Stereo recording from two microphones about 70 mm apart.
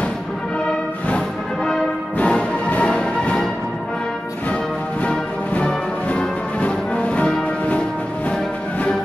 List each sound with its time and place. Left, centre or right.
1.0 s music: centre
5.0 s music: centre